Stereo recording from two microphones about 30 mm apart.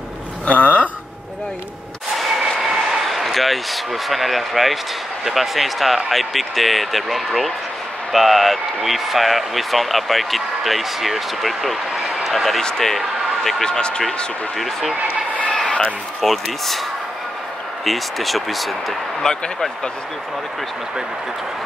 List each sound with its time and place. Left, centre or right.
0.5 s speech: left
2.1 s a sound: centre
2.6 s speech: centre
13.7 s speech: left
14.6 s speech: centre
15.0 s vehicle: right
16.2 s speech: centre
17.8 s speech: centre
19.2 s speech: left